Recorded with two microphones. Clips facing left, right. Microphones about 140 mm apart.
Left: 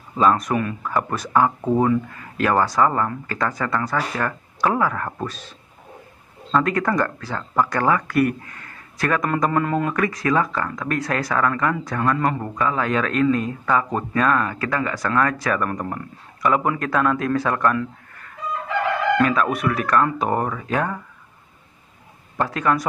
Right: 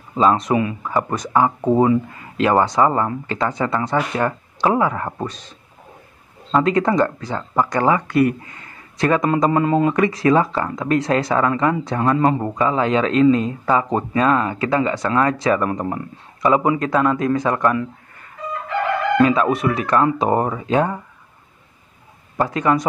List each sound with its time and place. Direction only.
0.2 s speech: 25° right (ahead or behind)
0.7 s speech: 10° right (ahead or behind)
6.7 s speech: 20° right (ahead or behind)
10.1 s speech: 30° right (ahead or behind); by 17.8 s 5° right (ahead or behind)
19.1 s speech: 25° right (ahead or behind)
22.6 s speech: 15° right (ahead or behind)